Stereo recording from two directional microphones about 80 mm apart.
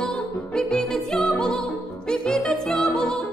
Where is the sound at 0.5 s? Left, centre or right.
Centre.